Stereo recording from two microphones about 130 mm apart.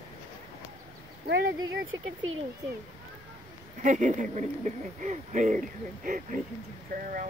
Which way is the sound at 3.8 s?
75° right (ahead or behind).